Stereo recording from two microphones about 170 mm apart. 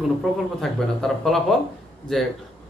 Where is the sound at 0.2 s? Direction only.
Centre (ahead or behind).